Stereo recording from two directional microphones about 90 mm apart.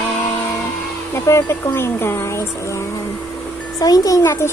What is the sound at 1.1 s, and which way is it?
Speech, 30° left (ahead or behind).